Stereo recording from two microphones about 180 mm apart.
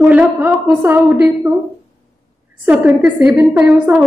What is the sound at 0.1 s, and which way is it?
A woman's voice, 10° right (ahead or behind).